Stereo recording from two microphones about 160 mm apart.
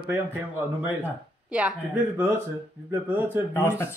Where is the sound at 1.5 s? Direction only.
10° right (ahead or behind).